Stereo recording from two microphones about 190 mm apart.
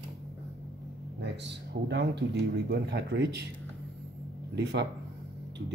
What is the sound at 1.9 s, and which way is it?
Speech, 65° right (ahead or behind).